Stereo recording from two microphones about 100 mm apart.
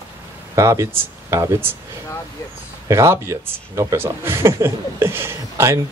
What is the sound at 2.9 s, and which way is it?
Speech, 30° right (ahead or behind).